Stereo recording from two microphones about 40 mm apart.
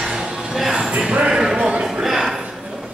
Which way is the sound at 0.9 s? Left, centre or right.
Right.